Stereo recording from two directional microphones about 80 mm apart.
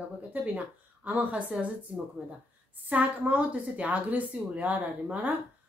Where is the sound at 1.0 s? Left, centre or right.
Centre.